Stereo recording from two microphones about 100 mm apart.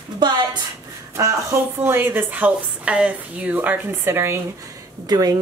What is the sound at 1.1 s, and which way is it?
A woman's voice, 30° right (ahead or behind).